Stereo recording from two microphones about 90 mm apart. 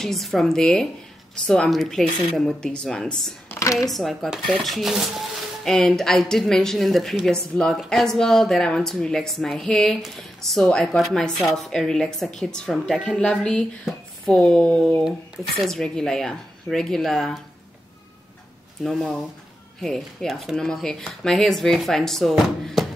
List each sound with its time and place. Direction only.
0.0 s speech: centre (ahead or behind)
3.4 s a sound: 35° left (ahead or behind)
3.9 s speech: centre (ahead or behind)
18.9 s speech: centre (ahead or behind)